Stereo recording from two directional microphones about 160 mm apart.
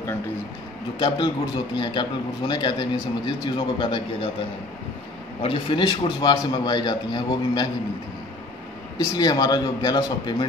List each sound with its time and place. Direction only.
0.9 s speech: 30° left (ahead or behind)
5.4 s speech: 30° left (ahead or behind)
8.9 s speech: 25° left (ahead or behind)